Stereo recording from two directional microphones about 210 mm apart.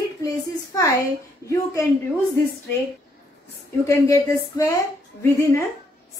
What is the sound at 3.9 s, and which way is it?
Speech, 15° left (ahead or behind).